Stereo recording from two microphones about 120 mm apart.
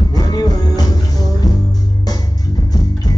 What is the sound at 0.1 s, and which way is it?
Music, 35° left (ahead or behind).